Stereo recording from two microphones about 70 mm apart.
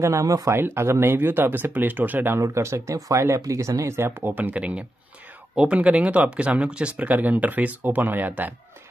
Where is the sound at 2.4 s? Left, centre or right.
Right.